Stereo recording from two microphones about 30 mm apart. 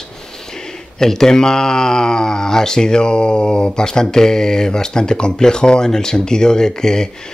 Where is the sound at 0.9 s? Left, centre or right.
Centre.